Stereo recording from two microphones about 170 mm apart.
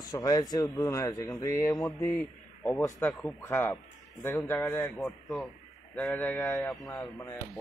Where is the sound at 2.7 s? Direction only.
20° left (ahead or behind).